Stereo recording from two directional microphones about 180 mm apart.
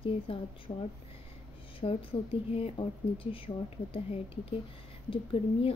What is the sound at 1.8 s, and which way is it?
Speech, 30° left (ahead or behind).